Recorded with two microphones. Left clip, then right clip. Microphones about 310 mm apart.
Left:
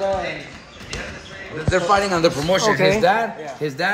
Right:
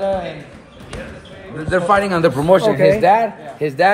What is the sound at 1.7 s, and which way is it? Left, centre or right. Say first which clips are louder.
Speech: right 3 dB; right.